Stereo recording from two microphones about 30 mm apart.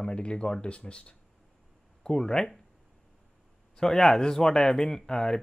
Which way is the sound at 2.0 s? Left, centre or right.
Left.